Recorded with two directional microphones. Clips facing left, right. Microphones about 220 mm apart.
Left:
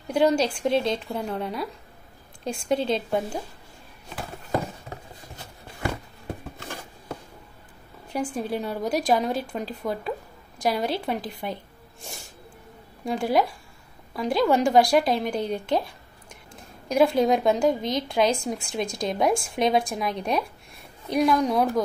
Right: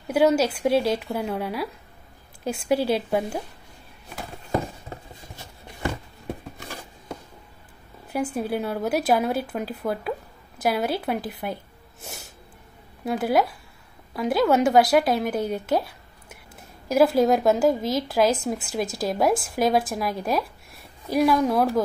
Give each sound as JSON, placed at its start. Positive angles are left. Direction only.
{"t": 0.1, "sound": "speech", "side_deg": -5}
{"t": 8.1, "sound": "a woman's voice", "side_deg": -5}